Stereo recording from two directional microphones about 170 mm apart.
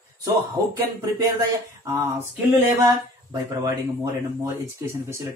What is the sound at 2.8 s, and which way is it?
Speech, 20° right (ahead or behind).